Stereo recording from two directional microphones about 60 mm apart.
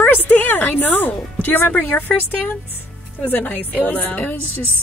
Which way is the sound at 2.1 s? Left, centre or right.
Centre.